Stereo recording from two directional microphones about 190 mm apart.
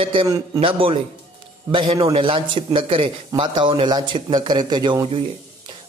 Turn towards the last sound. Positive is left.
turn(degrees=-25)  # may be behind; listen again after turning